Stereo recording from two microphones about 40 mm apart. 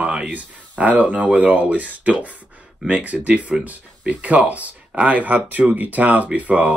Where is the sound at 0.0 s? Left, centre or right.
Right.